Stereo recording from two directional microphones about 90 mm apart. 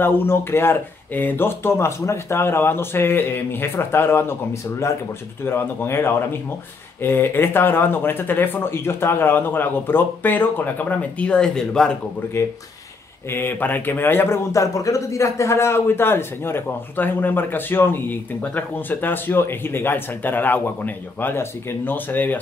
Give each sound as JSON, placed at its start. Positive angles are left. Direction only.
{"t": 0.0, "sound": "a man's voice", "side_deg": 25}
{"t": 12.4, "sound": "a man's voice", "side_deg": 30}